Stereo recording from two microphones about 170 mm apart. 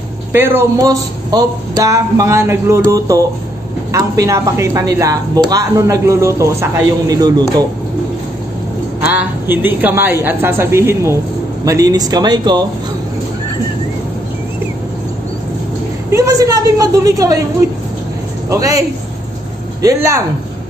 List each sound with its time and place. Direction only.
0.3 s speech: 15° right (ahead or behind)
9.0 s speech: 10° right (ahead or behind)
16.1 s speech: 20° right (ahead or behind)
18.5 s speech: 20° right (ahead or behind)
19.8 s speech: 20° right (ahead or behind)